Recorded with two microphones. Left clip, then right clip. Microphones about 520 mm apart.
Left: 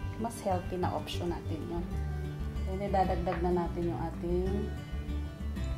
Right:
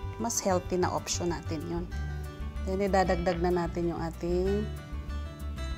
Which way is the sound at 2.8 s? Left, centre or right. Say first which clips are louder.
Right 4 dB; right.